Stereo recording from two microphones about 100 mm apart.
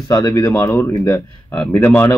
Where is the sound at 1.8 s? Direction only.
15° left (ahead or behind).